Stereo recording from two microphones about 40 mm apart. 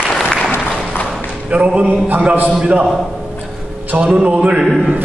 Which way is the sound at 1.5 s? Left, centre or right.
Right.